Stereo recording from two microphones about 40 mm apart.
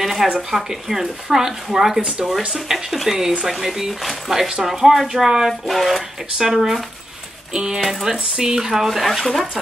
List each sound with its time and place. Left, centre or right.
0.0 s a sound: centre
0.5 s speech: centre
2.9 s speech: centre
5.5 s speech: centre
7.8 s speech: centre